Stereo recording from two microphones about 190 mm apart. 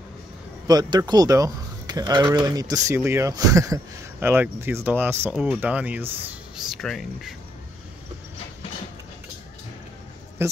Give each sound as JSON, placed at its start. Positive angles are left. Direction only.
{"t": 0.7, "sound": "speech", "side_deg": -20}
{"t": 10.4, "sound": "speech", "side_deg": -15}